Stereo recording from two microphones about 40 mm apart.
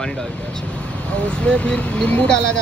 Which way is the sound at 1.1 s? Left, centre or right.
Left.